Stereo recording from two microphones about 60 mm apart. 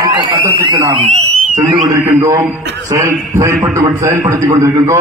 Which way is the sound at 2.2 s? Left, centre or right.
Right.